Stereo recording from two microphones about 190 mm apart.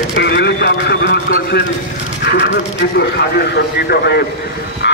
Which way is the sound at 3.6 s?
60° left (ahead or behind).